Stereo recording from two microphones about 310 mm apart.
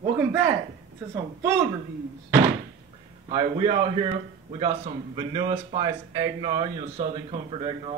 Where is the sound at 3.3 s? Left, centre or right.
Centre.